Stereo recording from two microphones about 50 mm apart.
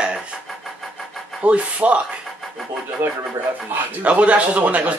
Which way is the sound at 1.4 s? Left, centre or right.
Right.